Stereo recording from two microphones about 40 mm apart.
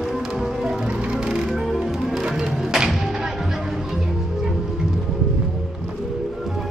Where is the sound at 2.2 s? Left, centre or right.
Right.